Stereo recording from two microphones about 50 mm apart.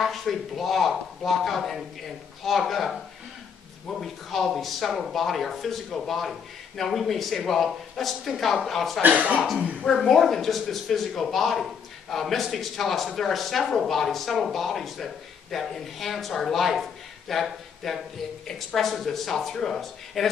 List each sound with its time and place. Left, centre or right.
0.0 s a man's voice: centre
4.0 s a man's voice: centre
9.0 s speech: right
9.8 s a man's voice: centre